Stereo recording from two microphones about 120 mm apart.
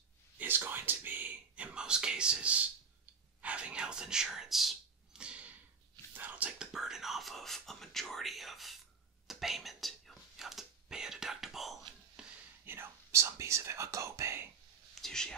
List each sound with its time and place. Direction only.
0.4 s whispering: 15° right (ahead or behind)
6.1 s speech: 15° right (ahead or behind)
9.3 s whispering: centre (ahead or behind)
12.6 s whispering: 20° right (ahead or behind)
15.0 s speech: 5° left (ahead or behind)